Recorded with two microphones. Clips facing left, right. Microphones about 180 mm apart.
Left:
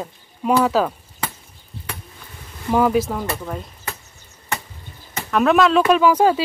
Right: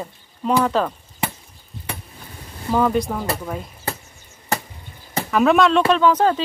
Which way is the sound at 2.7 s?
5° left (ahead or behind).